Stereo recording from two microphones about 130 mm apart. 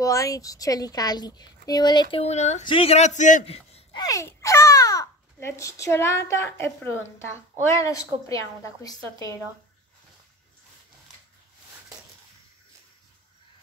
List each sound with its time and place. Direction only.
0.0 s speech: 25° left (ahead or behind)
2.2 s a man's voice: 60° left (ahead or behind)
2.7 s a man's voice: 50° left (ahead or behind); by 3.4 s 75° left (ahead or behind)
3.4 s speech: 50° left (ahead or behind)
3.9 s speech: 30° left (ahead or behind)